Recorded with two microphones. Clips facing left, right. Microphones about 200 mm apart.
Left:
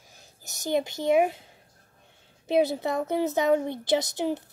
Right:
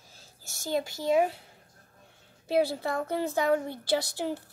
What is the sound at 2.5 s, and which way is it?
A woman's voice, 20° left (ahead or behind).